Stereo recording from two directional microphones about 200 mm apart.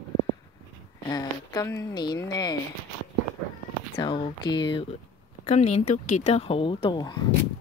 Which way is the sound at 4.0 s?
25° left (ahead or behind).